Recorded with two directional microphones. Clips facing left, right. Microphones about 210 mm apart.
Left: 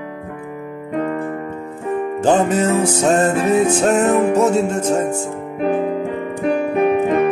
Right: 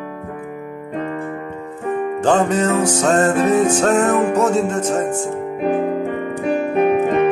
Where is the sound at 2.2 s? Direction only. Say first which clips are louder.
Left 1 dB; 5° left (ahead or behind).